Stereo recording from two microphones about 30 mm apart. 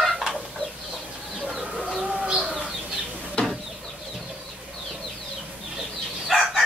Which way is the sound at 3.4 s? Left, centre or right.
Left.